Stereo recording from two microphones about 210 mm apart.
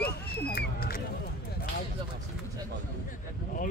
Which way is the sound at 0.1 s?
50° left (ahead or behind).